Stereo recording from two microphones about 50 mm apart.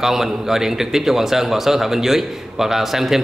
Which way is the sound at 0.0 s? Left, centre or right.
Centre.